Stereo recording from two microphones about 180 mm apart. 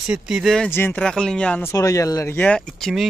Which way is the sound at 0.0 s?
5° right (ahead or behind).